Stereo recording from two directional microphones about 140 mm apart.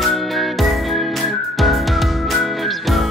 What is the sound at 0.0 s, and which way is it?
Music, centre (ahead or behind).